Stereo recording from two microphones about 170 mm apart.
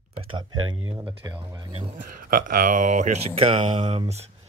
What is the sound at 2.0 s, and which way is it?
Speech, 55° right (ahead or behind).